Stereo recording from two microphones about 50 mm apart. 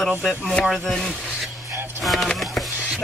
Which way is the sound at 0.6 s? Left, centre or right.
Centre.